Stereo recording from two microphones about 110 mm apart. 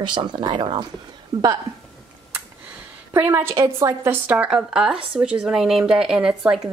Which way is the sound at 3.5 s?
30° right (ahead or behind).